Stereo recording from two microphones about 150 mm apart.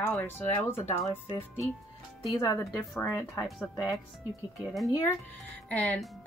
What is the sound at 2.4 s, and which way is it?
Speech, 20° left (ahead or behind).